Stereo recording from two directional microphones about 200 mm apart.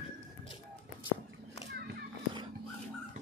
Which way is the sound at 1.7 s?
55° right (ahead or behind).